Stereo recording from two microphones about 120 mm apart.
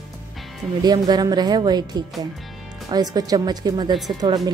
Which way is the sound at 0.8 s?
35° right (ahead or behind).